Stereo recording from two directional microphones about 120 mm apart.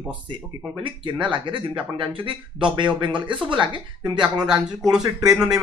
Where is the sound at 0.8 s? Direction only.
40° right (ahead or behind).